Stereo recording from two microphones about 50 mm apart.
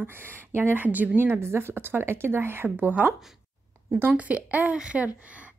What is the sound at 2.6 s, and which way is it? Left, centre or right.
Speech, right.